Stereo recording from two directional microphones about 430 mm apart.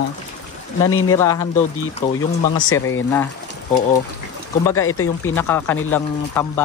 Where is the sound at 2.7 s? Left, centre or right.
Left.